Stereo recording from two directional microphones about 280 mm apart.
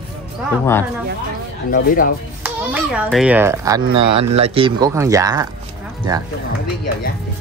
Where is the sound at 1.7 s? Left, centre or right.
Left.